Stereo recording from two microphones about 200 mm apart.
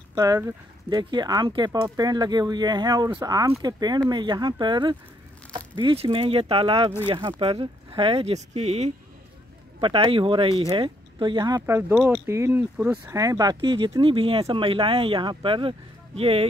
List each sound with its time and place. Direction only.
0.1 s speech: 15° right (ahead or behind)